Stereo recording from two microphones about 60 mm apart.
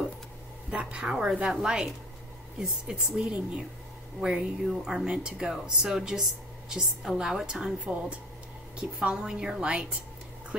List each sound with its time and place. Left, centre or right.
0.7 s speech: centre